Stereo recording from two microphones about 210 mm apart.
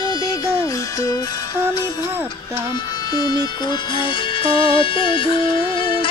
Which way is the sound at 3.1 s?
20° left (ahead or behind).